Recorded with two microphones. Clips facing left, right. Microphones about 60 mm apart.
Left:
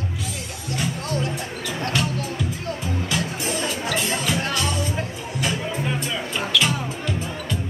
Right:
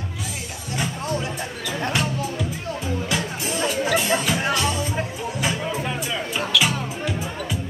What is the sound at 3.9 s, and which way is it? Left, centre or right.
Music, centre.